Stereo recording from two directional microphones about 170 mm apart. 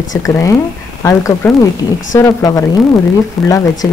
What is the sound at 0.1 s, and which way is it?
A woman's voice, 20° left (ahead or behind).